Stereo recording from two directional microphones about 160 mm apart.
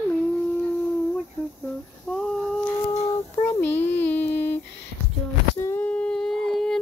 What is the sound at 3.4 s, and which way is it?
Child singing, 15° left (ahead or behind).